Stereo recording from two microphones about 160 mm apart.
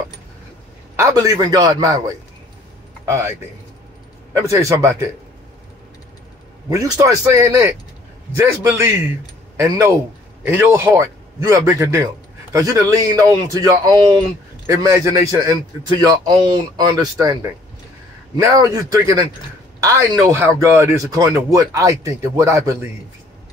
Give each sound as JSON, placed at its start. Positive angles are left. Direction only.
{"t": 0.9, "sound": "speech", "side_deg": -20}
{"t": 3.1, "sound": "a man's voice", "side_deg": -15}
{"t": 4.5, "sound": "speech", "side_deg": -20}
{"t": 6.7, "sound": "a man's voice", "side_deg": -20}